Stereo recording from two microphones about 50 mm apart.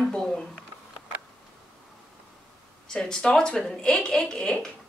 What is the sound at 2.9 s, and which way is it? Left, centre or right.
A woman's voice, centre.